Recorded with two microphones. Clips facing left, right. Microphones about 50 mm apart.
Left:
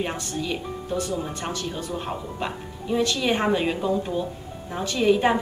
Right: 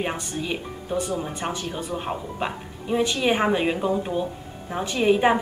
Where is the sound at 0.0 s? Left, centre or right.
Centre.